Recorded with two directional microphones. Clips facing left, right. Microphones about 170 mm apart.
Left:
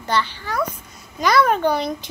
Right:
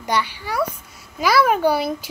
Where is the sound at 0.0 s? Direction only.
10° right (ahead or behind).